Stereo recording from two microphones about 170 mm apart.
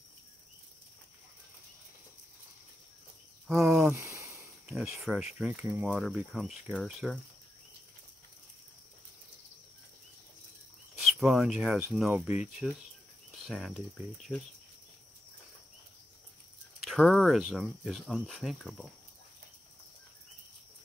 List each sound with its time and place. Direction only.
3.4 s speech: 5° right (ahead or behind)
3.9 s a sound: 15° right (ahead or behind)
4.6 s speech: 5° right (ahead or behind)
11.1 s speech: centre (ahead or behind)
16.8 s speech: centre (ahead or behind)